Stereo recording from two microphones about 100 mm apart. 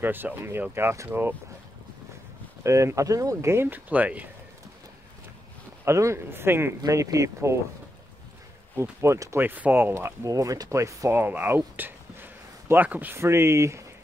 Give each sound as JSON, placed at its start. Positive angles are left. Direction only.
{"t": 0.0, "sound": "speech", "side_deg": -20}
{"t": 2.6, "sound": "speech", "side_deg": -30}
{"t": 3.6, "sound": "speech", "side_deg": -15}
{"t": 5.9, "sound": "speech", "side_deg": -30}
{"t": 6.8, "sound": "speech", "side_deg": -35}
{"t": 9.0, "sound": "speech", "side_deg": -30}